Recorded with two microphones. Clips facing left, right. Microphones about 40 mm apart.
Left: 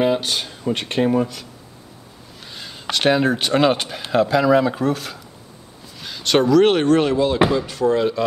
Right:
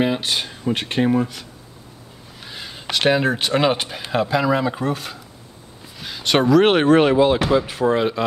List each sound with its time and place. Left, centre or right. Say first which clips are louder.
0.0 s speech: left 1 dB; centre
2.4 s speech: left 1 dB; centre